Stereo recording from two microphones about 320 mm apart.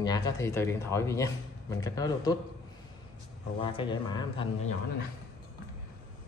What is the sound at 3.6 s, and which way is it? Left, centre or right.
Speech, centre.